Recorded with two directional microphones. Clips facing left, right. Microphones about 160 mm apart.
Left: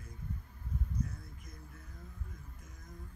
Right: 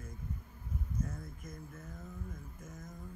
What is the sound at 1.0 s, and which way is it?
Speech, 45° right (ahead or behind).